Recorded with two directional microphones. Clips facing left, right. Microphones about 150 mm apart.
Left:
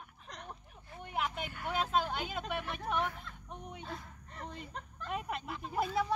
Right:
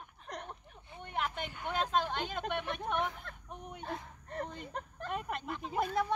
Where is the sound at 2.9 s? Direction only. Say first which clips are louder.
Left 1 dB; centre (ahead or behind).